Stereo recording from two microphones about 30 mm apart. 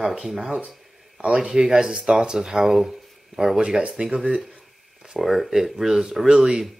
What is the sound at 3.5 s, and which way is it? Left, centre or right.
Speech, right.